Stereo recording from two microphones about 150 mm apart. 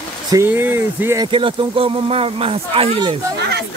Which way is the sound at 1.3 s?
35° right (ahead or behind).